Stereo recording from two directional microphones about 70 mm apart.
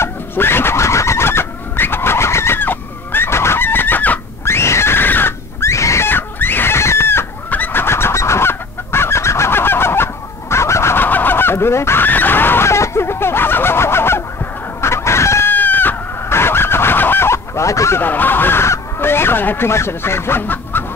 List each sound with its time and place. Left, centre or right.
0.0 s a sound: left
4.5 s a sound: left
6.0 s chicken: left
10.5 s fowl: left
11.1 s fowl: left
14.8 s chicken: left
15.5 s goat: left
18.0 s fowl: left